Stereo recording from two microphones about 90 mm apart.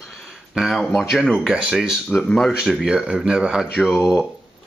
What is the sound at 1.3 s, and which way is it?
Speech, 10° right (ahead or behind).